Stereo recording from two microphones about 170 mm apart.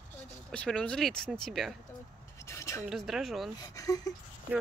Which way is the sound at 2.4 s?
15° left (ahead or behind).